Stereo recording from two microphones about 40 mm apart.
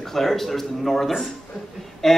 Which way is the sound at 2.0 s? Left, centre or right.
Centre.